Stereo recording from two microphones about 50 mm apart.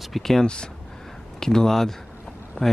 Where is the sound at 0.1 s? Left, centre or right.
Centre.